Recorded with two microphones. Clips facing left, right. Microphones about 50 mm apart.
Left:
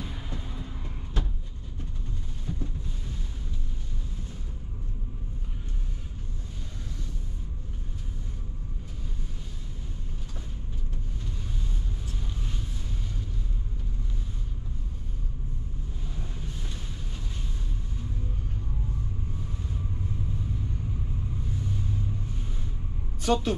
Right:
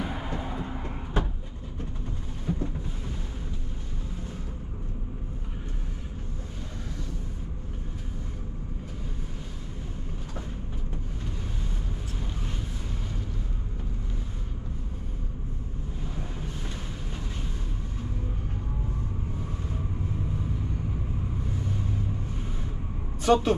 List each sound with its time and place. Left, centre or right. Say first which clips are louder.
0.0 s vehicle: right 7 dB; right
2.5 s thunder: right 6 dB; right
23.2 s speech: right 4 dB; right